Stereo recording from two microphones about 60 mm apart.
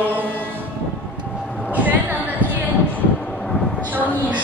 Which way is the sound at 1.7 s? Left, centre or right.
Right.